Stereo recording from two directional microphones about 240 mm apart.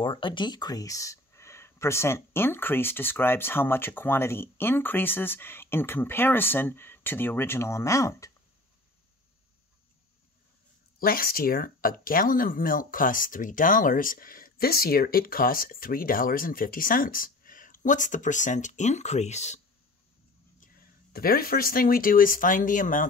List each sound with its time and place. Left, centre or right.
0.0 s speech: left
11.0 s speech: left
20.6 s speech: left